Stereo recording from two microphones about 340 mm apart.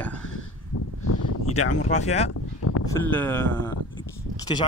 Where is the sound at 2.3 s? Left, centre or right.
Left.